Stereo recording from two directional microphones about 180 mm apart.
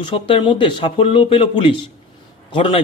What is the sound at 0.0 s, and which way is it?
Speech, 30° left (ahead or behind).